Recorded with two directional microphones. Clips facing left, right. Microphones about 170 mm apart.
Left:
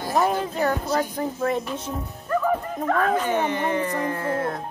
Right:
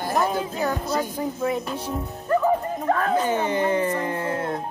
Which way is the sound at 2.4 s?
35° right (ahead or behind).